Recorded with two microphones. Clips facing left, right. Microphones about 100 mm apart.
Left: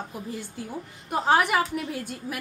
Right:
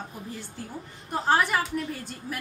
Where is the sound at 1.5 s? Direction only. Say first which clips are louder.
Left 2 dB; 5° left (ahead or behind).